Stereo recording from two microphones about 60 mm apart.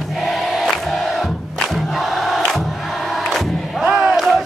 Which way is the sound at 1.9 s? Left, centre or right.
Centre.